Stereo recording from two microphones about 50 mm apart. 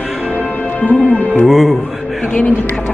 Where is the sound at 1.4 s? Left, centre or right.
Centre.